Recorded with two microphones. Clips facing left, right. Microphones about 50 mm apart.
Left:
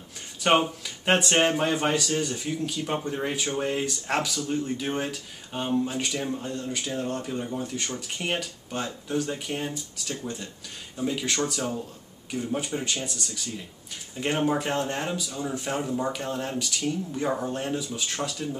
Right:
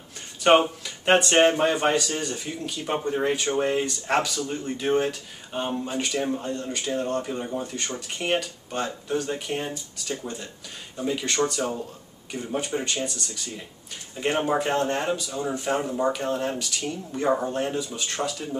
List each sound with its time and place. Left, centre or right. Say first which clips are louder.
0.4 s speech: right 4 dB; centre